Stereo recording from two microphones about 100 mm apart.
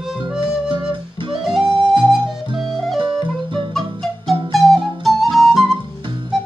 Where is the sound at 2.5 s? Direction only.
Centre (ahead or behind).